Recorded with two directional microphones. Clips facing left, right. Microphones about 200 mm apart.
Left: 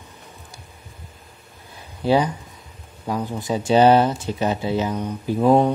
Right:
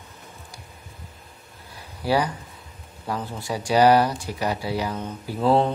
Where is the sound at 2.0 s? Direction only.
20° left (ahead or behind).